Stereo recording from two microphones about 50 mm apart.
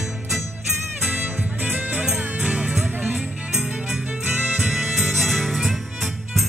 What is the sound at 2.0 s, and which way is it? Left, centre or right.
Music, centre.